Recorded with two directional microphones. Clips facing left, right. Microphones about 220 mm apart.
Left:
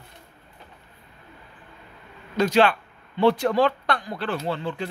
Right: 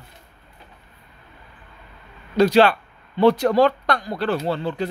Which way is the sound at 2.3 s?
35° right (ahead or behind).